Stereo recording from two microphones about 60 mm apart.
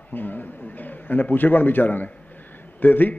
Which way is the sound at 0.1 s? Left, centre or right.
Left.